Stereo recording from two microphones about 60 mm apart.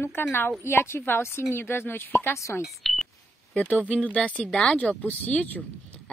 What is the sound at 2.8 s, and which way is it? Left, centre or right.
Speech, centre.